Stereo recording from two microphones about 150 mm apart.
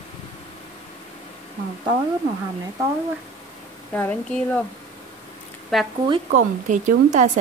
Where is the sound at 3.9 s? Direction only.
10° left (ahead or behind).